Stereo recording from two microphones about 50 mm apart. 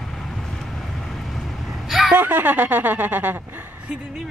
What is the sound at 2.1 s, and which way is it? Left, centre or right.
A woman's voice, right.